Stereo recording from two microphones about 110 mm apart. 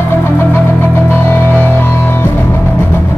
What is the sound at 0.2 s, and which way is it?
Music, 20° left (ahead or behind).